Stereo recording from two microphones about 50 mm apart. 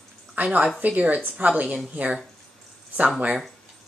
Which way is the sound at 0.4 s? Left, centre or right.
Right.